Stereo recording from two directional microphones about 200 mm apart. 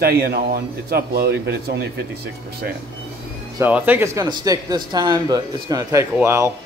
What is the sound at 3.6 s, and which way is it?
Speech, 10° right (ahead or behind).